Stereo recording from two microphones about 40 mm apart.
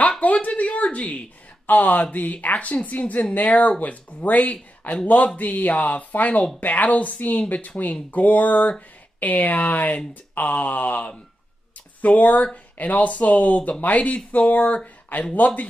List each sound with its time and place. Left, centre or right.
0.2 s speech: left
0.5 s a sound: left
0.9 s speech: left